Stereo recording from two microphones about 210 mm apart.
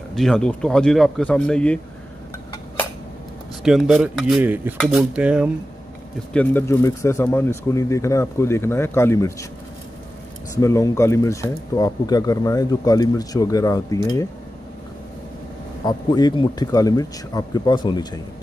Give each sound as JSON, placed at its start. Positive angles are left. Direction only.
{"t": 0.1, "sound": "speech", "side_deg": 5}
{"t": 3.6, "sound": "speech", "side_deg": 0}
{"t": 6.3, "sound": "speech", "side_deg": 10}
{"t": 10.6, "sound": "speech", "side_deg": 15}
{"t": 15.8, "sound": "speech", "side_deg": 20}